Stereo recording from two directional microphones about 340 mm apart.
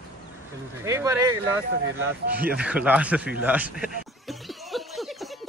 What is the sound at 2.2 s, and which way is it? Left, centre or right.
Speech, right.